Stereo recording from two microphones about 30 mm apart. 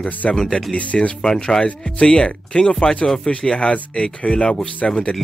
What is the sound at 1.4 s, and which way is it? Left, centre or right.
Speech, left.